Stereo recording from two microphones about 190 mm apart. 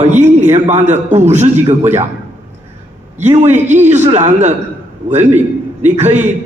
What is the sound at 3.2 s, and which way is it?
A man's voice, 35° right (ahead or behind).